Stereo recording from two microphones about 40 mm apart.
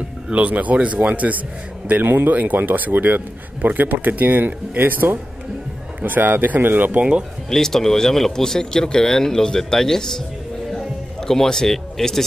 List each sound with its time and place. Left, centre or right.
0.3 s speech: right
1.9 s speech: right
7.0 s speech: right
7.4 s speech: centre
11.2 s speech: centre